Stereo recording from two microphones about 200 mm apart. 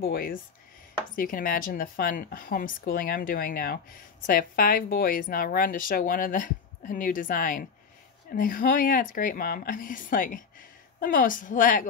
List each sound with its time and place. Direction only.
0.0 s speech: 45° left (ahead or behind)